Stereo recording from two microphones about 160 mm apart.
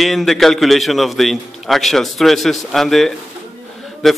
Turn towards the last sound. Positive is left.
turn(degrees=0)  # may be behind; listen again after turning